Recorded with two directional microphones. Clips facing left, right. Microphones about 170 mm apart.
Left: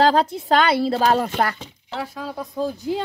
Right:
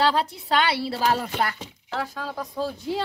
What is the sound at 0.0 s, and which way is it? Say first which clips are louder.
A woman's voice: left 5 dB; 45° left (ahead or behind).